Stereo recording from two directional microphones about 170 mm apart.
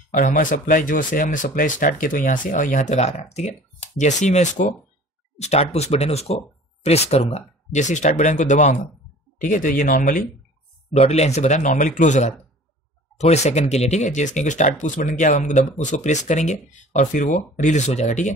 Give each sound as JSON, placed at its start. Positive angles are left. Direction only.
{"t": 0.1, "sound": "speech", "side_deg": 50}
{"t": 10.9, "sound": "speech", "side_deg": 40}